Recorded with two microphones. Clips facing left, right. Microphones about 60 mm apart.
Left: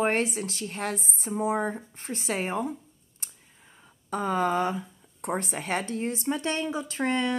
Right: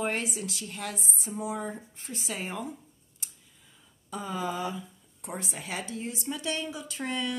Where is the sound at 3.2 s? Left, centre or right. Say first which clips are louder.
Left 1 dB; left.